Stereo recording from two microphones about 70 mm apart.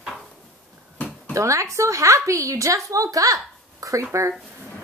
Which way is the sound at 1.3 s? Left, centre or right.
Right.